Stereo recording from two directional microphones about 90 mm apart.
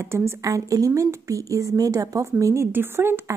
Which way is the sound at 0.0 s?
30° right (ahead or behind).